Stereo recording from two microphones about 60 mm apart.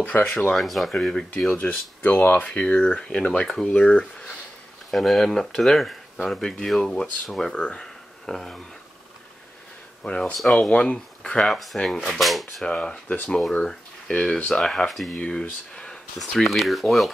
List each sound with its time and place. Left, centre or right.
0.0 s speech: left
0.5 s speech: centre
0.9 s speech: centre
1.5 s speech: left
4.9 s speech: centre
7.7 s a sound: centre
10.0 s speech: centre
10.3 s speech: centre
10.7 s speech: centre
11.4 s speech: centre
12.6 s speech: centre
15.1 s speech: centre
15.7 s a sound: centre
16.2 s speech: centre